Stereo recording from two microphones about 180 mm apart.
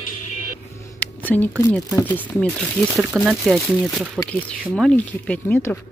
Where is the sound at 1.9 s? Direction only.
10° left (ahead or behind).